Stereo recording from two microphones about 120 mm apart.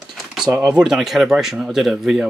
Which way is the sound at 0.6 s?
5° right (ahead or behind).